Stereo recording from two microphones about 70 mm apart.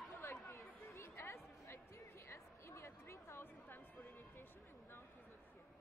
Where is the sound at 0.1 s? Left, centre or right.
Left.